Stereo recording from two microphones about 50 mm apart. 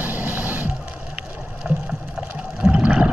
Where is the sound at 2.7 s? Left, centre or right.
Centre.